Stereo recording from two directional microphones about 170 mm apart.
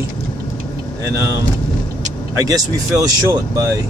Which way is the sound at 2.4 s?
20° right (ahead or behind).